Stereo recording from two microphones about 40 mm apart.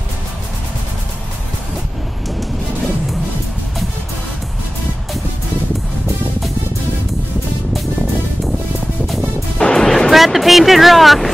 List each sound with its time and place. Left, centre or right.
9.6 s music: left
10.1 s vehicle: centre